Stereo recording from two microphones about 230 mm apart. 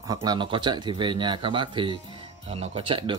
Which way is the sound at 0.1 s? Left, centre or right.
Centre.